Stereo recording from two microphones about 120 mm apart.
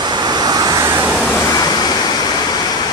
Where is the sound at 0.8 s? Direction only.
20° right (ahead or behind).